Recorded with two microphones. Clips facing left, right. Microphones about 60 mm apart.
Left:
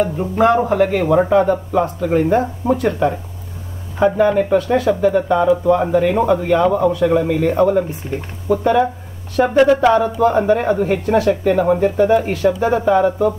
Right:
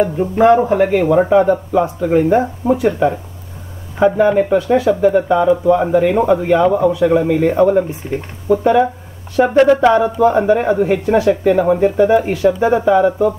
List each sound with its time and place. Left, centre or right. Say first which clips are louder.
0.0 s a man's voice: right 3 dB; centre